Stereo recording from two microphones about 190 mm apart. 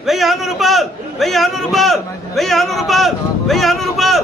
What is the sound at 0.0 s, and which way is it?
A man's voice, centre (ahead or behind).